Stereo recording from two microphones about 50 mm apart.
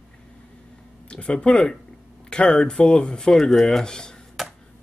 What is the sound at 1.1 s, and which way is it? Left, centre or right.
Speech, centre.